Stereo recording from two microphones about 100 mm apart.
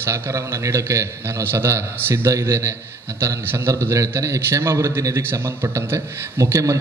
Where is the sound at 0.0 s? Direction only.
30° right (ahead or behind).